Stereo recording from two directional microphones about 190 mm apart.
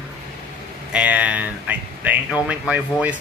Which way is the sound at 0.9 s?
10° right (ahead or behind).